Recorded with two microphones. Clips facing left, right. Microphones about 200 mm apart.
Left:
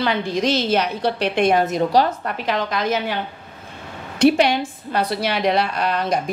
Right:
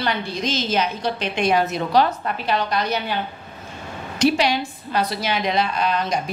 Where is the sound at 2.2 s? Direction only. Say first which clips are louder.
Even; 90° left.